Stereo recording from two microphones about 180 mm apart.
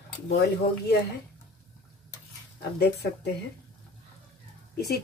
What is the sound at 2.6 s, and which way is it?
Speech, 65° left (ahead or behind).